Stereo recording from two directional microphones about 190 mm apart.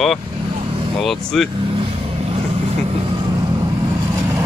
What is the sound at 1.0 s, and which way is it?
Speech, centre (ahead or behind).